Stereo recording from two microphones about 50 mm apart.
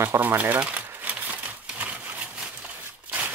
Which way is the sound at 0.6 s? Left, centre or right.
Right.